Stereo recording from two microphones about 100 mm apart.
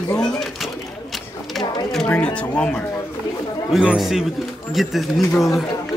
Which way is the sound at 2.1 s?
10° left (ahead or behind).